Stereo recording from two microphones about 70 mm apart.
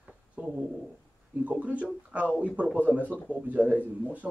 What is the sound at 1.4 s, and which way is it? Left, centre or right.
Speech, right.